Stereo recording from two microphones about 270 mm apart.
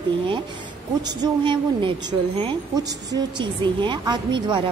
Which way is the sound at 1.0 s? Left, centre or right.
Centre.